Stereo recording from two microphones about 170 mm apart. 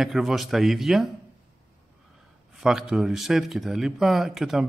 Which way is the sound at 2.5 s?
5° right (ahead or behind).